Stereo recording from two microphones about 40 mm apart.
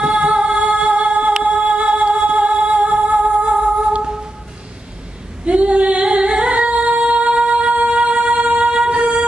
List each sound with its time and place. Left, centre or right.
0.0 s music: right
5.4 s female singing: right